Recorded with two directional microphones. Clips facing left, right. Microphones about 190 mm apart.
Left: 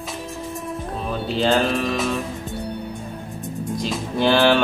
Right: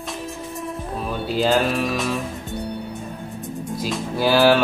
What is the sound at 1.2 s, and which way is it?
Speech, 5° right (ahead or behind).